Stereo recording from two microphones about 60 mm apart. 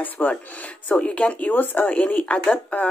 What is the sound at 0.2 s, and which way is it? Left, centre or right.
Speech, left.